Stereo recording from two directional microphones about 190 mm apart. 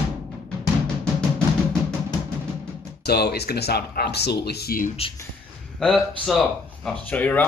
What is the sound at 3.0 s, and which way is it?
Speech, 55° left (ahead or behind).